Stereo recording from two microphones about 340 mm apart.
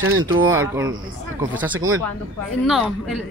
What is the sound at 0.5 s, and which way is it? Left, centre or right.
A woman's voice, centre.